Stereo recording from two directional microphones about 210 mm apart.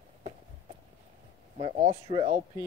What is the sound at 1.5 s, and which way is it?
Speech, 30° right (ahead or behind).